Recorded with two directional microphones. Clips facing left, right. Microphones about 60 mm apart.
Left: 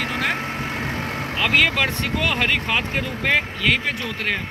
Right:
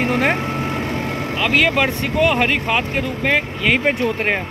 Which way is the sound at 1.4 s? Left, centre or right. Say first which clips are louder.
Right 2 dB; centre.